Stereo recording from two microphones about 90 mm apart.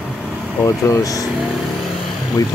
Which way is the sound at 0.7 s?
40° left (ahead or behind).